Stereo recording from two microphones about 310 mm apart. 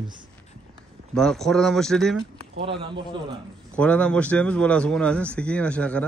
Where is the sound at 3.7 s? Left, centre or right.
Centre.